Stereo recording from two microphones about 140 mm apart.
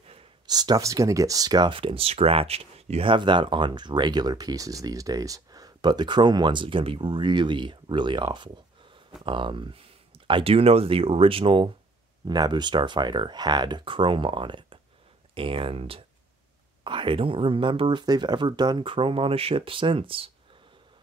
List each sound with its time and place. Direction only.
0.5 s speech: 30° right (ahead or behind)